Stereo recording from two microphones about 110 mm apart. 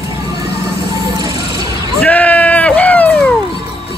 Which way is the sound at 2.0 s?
15° left (ahead or behind).